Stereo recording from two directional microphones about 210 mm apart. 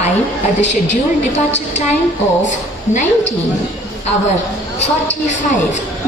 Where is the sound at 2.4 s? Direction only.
35° left (ahead or behind).